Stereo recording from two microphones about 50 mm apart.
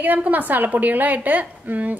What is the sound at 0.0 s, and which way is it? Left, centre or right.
A woman's voice, right.